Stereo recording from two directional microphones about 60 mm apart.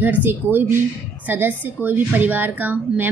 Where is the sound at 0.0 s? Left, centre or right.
Right.